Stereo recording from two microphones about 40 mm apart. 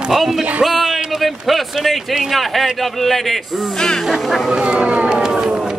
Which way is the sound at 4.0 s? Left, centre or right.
Centre.